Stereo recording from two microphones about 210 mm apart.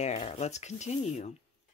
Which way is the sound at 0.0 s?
30° left (ahead or behind).